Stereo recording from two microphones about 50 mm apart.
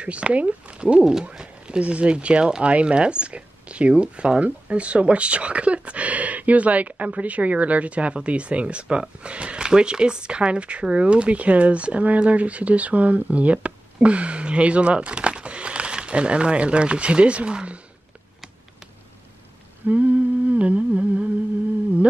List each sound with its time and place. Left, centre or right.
0.0 s speech: right
19.9 s humming: right